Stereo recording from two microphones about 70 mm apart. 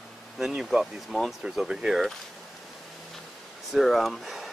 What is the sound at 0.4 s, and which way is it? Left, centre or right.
Speech, centre.